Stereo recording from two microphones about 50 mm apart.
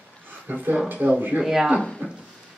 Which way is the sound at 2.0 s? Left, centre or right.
Right.